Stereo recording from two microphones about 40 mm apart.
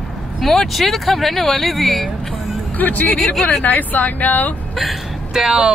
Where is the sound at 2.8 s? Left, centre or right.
Left.